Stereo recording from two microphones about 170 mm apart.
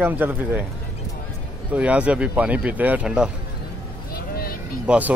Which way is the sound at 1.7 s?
10° right (ahead or behind).